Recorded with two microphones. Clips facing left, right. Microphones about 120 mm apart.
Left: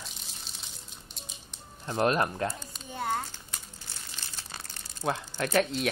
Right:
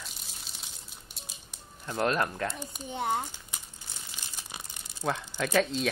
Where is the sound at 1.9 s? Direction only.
20° left (ahead or behind).